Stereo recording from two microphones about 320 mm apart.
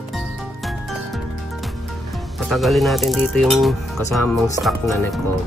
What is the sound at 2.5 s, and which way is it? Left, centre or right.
Speech, centre.